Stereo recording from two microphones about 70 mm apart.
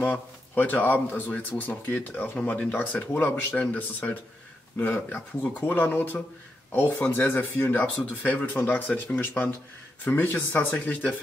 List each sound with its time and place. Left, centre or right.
0.0 s a man's voice: left